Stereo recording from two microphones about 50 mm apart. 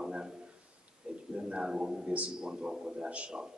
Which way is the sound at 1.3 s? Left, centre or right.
Centre.